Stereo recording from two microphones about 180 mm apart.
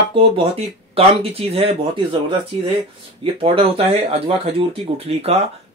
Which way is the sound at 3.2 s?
30° right (ahead or behind).